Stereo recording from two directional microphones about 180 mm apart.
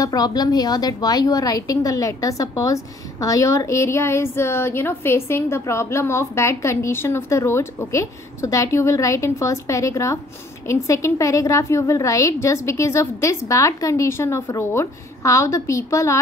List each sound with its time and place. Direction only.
0.0 s a woman's voice: 20° left (ahead or behind)